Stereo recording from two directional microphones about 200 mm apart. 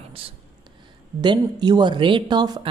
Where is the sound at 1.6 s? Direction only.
20° right (ahead or behind).